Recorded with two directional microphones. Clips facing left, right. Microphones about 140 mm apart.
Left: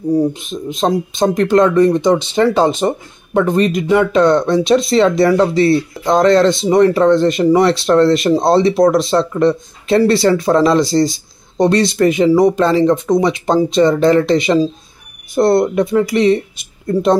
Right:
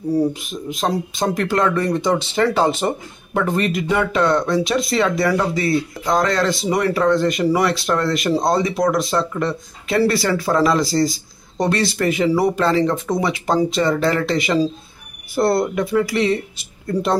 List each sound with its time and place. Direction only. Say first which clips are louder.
0.3 s speech: left 4 dB; 25° left (ahead or behind)